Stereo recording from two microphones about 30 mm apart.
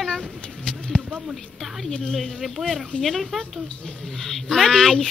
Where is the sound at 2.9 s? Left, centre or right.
Left.